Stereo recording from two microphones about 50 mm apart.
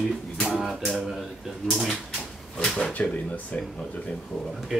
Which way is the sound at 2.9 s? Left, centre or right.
Left.